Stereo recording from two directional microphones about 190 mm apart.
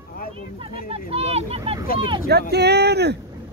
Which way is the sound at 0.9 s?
30° right (ahead or behind).